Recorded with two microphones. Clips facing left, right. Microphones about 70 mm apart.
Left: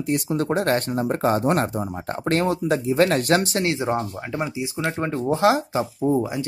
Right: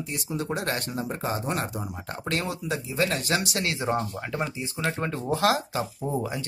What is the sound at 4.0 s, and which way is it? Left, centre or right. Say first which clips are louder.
Speech: left 3 dB; centre.